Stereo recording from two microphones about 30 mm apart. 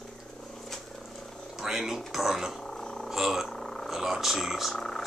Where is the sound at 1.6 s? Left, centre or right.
Centre.